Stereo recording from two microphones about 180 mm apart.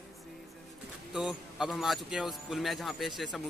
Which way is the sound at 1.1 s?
5° right (ahead or behind).